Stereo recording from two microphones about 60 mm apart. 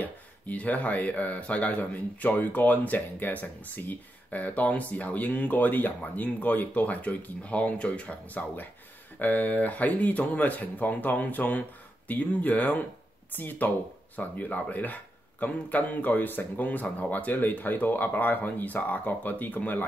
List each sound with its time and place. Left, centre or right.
0.0 s speech: left